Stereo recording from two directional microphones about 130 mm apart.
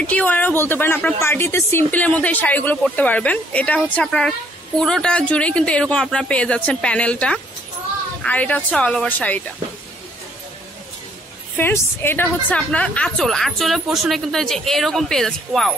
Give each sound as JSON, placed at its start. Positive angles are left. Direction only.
{"t": 0.0, "sound": "speech", "side_deg": 10}
{"t": 11.5, "sound": "a woman's voice", "side_deg": 15}